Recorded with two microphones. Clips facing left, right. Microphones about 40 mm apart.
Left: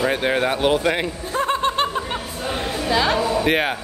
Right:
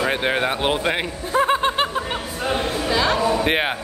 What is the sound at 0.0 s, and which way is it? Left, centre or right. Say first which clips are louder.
Speech: left 1 dB; centre.